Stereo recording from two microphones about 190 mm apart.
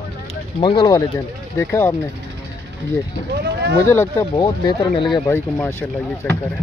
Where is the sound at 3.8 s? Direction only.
15° left (ahead or behind).